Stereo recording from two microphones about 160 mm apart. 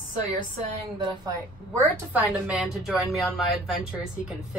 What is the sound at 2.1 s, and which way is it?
A woman's voice, 10° right (ahead or behind).